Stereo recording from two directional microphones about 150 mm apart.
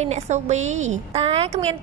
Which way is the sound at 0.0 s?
50° right (ahead or behind).